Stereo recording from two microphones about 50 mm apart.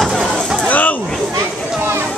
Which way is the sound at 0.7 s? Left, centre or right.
Left.